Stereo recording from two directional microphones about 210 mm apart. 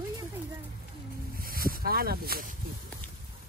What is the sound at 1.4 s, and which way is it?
Speech, 45° right (ahead or behind).